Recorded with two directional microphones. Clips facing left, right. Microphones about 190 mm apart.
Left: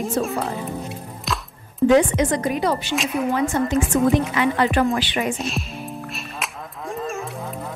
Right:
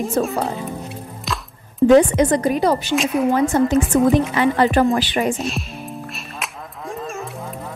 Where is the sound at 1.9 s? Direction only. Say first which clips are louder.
Right 4 dB; 40° right (ahead or behind).